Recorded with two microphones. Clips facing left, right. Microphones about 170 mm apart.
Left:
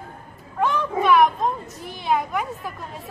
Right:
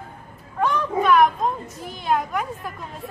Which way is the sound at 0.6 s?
5° left (ahead or behind).